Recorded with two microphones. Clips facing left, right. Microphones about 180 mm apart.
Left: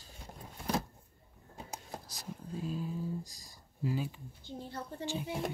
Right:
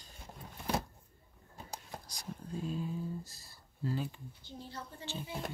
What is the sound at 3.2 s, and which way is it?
Speech, 15° left (ahead or behind).